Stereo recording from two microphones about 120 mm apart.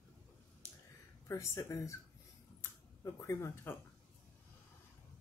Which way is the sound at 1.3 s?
25° left (ahead or behind).